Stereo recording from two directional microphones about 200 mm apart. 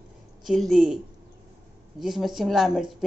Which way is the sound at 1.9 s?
Centre (ahead or behind).